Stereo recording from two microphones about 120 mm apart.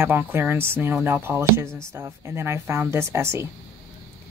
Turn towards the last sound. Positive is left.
turn(degrees=-25)  # may be behind; listen again after turning